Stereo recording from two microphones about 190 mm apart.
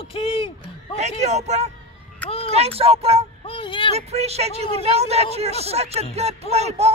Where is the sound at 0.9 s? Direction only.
35° right (ahead or behind).